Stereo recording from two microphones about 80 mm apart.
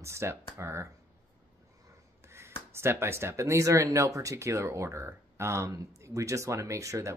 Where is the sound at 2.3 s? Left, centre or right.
Right.